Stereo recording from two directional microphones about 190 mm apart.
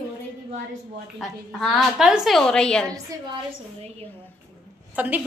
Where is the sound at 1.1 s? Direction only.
Centre (ahead or behind).